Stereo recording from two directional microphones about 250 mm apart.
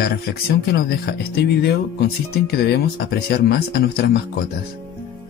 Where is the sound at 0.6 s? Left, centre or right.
Left.